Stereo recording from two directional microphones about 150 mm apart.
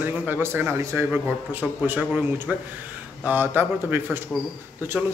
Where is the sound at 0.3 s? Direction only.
15° right (ahead or behind).